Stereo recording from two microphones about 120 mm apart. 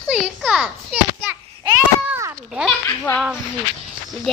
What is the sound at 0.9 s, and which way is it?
Children playing, 15° right (ahead or behind).